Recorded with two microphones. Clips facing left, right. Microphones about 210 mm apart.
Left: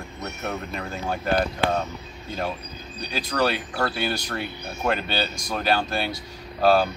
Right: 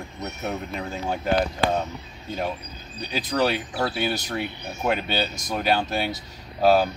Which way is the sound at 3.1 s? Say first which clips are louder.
Right 1 dB; 15° right (ahead or behind).